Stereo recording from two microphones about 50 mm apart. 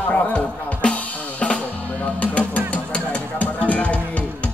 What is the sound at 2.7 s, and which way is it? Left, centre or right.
Music, left.